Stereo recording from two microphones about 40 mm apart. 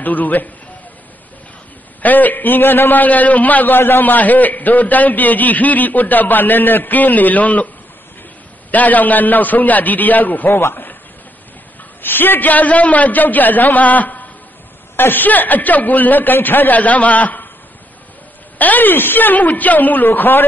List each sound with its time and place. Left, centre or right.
0.0 s a man's voice: left
2.0 s a man's voice: left
3.7 s a man's voice: left
8.7 s a man's voice: left
10.5 s speech: left
12.0 s a man's voice: left
15.0 s a man's voice: left
18.6 s a man's voice: left
20.1 s a man's voice: left